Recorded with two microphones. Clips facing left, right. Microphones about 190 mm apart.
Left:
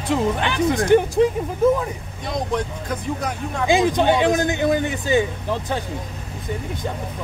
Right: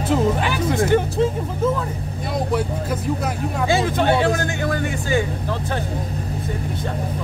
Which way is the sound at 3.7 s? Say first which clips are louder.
Left 2 dB; 15° left (ahead or behind).